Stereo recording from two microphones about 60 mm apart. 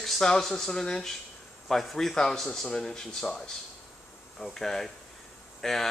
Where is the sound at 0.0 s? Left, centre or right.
Centre.